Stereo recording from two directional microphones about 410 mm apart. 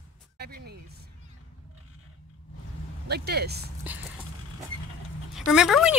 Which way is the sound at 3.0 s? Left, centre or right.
Right.